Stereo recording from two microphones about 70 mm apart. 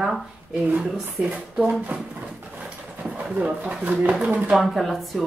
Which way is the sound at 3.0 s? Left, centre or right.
Centre.